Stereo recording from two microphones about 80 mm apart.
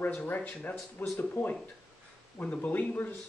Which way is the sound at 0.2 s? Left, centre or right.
Left.